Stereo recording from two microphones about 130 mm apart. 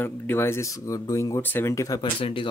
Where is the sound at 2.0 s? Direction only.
40° left (ahead or behind).